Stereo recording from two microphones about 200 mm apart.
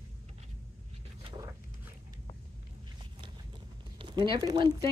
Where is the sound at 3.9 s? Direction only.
25° right (ahead or behind).